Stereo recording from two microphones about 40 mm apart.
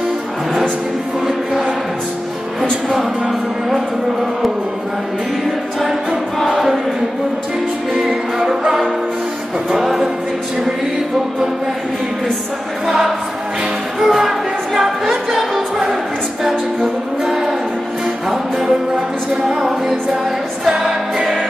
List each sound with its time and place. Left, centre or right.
2.9 s music: centre
7.9 s music: centre
9.7 s music: centre
13.9 s music: centre
16.8 s music: centre